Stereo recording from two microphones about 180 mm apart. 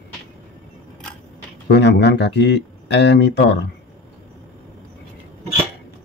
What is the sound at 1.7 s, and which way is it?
Speech, 70° left (ahead or behind).